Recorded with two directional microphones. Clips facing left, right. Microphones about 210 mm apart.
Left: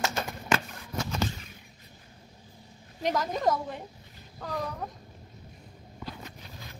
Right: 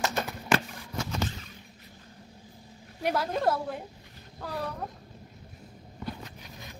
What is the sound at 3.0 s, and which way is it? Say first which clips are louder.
A woman's voice: right 1 dB; 10° right (ahead or behind).